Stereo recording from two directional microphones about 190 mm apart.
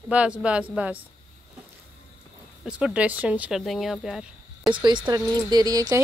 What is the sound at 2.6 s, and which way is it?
Speech, 5° right (ahead or behind).